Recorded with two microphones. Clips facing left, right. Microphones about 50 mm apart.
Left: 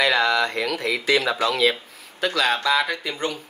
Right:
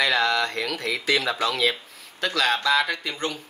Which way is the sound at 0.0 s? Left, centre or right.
Centre.